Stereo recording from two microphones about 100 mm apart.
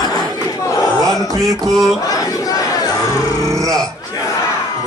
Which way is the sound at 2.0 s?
35° left (ahead or behind).